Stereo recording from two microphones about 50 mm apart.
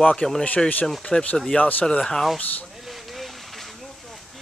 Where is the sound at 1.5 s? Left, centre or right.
Left.